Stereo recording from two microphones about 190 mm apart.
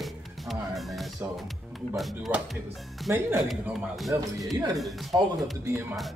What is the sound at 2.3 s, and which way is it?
Speech, 10° right (ahead or behind).